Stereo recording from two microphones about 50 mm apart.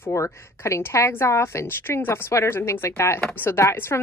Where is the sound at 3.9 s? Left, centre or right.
Left.